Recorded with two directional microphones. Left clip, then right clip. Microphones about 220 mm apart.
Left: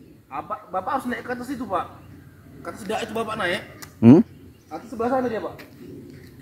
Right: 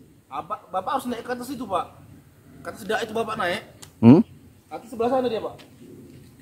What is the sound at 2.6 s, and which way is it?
A man's voice, 30° right (ahead or behind).